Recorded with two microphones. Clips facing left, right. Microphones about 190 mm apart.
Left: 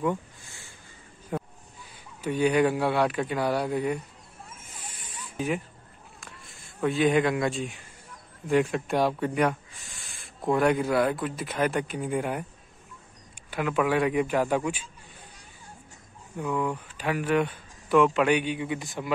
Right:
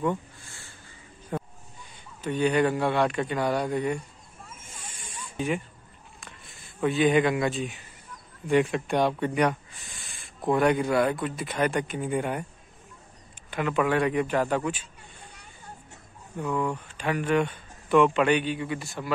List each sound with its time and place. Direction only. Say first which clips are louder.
0.5 s crow: right 1 dB; 15° left (ahead or behind)
1.3 s a sound: even; 5° left (ahead or behind)
2.2 s speech: left 1 dB; 10° left (ahead or behind)
4.7 s a sound: right 1 dB; 10° left (ahead or behind)
6.2 s speech: even; centre (ahead or behind)
13.5 s speech: even; 5° left (ahead or behind)
16.3 s speech: even; 10° left (ahead or behind)